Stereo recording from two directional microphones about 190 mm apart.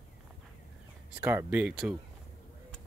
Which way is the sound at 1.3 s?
10° right (ahead or behind).